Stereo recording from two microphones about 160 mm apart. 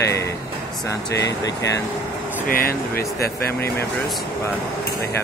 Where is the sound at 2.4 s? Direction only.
65° left (ahead or behind).